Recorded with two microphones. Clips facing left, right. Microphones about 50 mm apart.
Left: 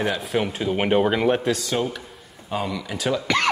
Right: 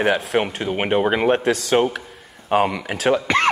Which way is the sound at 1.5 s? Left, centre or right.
Right.